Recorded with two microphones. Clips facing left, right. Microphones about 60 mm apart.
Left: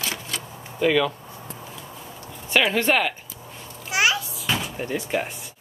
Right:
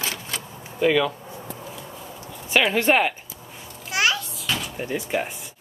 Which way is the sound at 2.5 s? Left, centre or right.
Centre.